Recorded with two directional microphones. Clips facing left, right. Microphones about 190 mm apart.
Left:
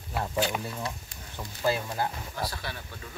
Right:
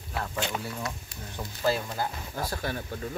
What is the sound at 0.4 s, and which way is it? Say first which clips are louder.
Speech: left 4 dB; 10° left (ahead or behind).